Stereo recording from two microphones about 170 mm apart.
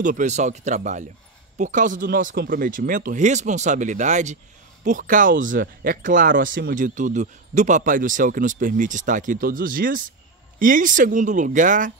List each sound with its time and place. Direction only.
0.0 s speech: 45° right (ahead or behind)